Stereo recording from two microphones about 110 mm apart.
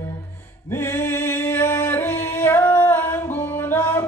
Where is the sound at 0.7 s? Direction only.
20° left (ahead or behind).